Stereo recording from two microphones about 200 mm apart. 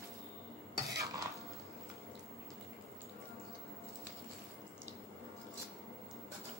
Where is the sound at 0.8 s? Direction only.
15° right (ahead or behind).